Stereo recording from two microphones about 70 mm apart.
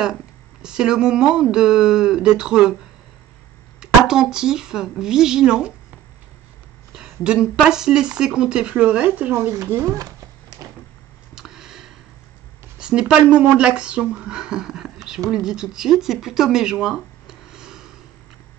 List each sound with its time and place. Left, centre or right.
0.0 s speech: centre
3.8 s speech: centre
6.9 s speech: centre
9.3 s speech: right
11.3 s a sound: centre
13.1 s speech: centre